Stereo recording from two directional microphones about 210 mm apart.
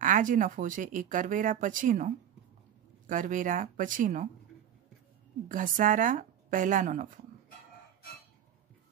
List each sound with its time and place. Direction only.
0.0 s speech: 40° right (ahead or behind)
5.5 s speech: 40° right (ahead or behind)